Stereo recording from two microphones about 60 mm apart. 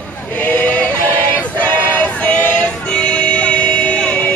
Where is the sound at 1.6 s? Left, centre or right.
Left.